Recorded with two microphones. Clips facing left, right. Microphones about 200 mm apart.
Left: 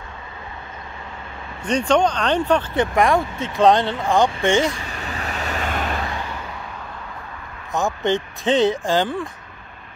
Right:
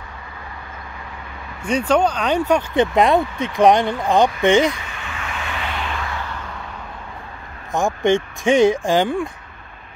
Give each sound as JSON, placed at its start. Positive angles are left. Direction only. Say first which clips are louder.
{"t": 1.6, "sound": "speech", "louder": "even", "side_deg": -10}
{"t": 4.8, "sound": "vehicle", "louder": "left 2 dB", "side_deg": 40}
{"t": 7.7, "sound": "speech", "louder": "right 3 dB", "side_deg": -15}